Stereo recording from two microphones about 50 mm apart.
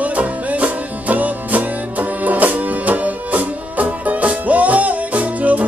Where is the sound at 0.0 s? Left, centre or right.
Right.